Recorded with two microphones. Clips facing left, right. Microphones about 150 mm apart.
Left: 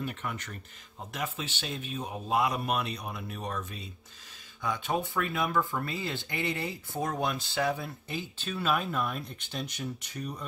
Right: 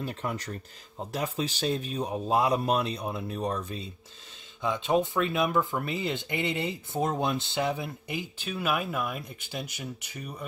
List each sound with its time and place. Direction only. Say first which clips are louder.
0.0 s a man's voice: right 3 dB; 35° right (ahead or behind)
4.6 s speech: right 5 dB; 20° right (ahead or behind)